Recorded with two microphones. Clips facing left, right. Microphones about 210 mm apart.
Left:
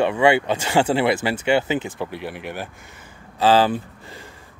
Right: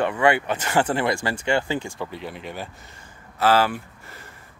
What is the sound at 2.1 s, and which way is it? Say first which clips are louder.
Speech: left 3 dB; 70° left (ahead or behind).